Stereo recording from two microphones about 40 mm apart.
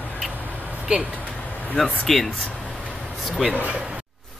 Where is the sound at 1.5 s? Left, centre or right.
Left.